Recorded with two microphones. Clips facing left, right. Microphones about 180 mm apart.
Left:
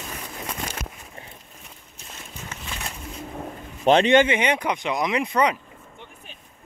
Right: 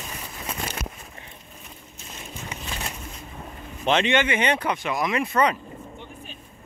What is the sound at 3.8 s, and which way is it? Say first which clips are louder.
Speech: left 5 dB; 35° left (ahead or behind).